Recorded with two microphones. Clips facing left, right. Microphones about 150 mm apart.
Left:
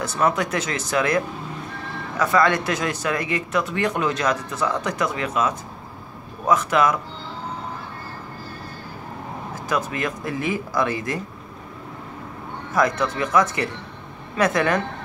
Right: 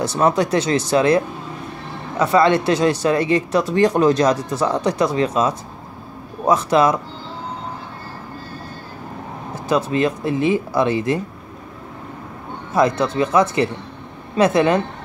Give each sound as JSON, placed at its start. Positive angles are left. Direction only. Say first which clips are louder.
{"t": 0.0, "sound": "speech", "louder": "right 5 dB", "side_deg": -30}
{"t": 9.7, "sound": "speech", "louder": "right 7 dB", "side_deg": -30}
{"t": 12.7, "sound": "speech", "louder": "right 4 dB", "side_deg": -30}